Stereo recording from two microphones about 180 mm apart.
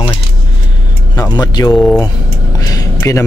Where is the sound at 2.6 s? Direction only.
20° left (ahead or behind).